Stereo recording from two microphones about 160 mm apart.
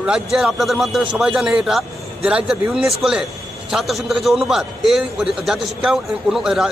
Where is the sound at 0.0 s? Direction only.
Centre (ahead or behind).